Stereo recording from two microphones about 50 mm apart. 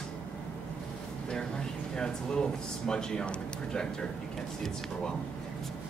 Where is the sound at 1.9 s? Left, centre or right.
Centre.